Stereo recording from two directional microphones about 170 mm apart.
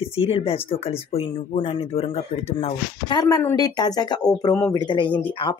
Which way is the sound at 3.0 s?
25° left (ahead or behind).